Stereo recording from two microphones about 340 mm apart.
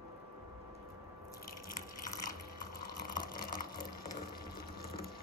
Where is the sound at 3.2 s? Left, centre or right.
Left.